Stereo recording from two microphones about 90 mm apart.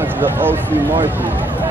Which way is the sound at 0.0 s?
20° right (ahead or behind).